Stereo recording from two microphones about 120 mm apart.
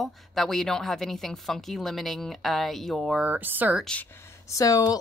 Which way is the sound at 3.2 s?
15° right (ahead or behind).